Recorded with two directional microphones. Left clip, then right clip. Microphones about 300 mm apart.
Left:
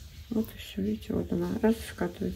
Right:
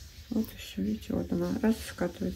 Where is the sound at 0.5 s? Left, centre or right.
Centre.